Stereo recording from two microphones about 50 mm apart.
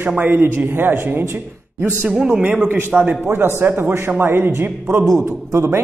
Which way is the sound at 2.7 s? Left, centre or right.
Right.